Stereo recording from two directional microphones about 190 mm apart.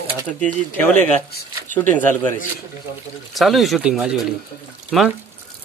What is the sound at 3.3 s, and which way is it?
Speech, centre (ahead or behind).